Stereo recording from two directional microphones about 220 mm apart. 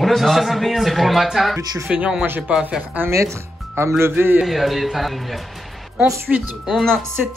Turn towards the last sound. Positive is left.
turn(degrees=0)  # may be behind; listen again after turning